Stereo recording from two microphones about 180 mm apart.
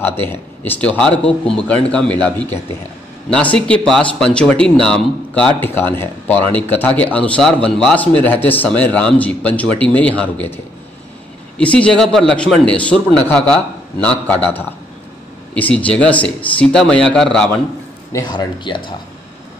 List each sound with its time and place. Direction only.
0.0 s a man's voice: 10° left (ahead or behind)
18.1 s speech: 20° left (ahead or behind)